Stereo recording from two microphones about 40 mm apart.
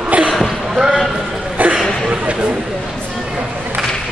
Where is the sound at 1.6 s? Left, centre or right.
Right.